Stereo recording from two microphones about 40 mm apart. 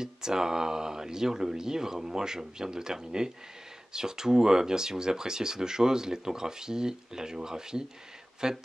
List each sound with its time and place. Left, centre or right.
0.0 s speech: centre